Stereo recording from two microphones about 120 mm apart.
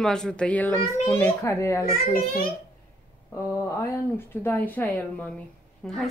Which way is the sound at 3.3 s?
20° left (ahead or behind).